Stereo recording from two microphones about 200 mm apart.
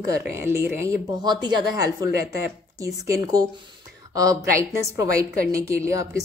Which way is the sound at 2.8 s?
15° right (ahead or behind).